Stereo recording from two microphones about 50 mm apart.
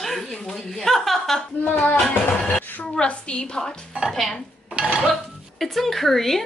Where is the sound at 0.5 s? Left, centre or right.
Centre.